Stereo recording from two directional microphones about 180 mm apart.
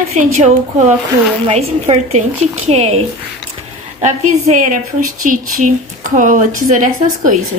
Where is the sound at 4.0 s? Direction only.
40° right (ahead or behind).